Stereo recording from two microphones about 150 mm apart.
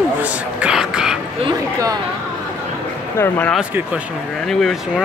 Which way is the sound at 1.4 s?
40° right (ahead or behind).